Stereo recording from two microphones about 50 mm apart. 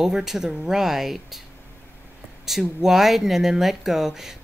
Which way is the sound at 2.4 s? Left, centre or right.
Centre.